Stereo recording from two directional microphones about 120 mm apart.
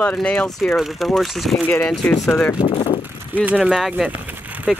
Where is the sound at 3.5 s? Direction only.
10° right (ahead or behind).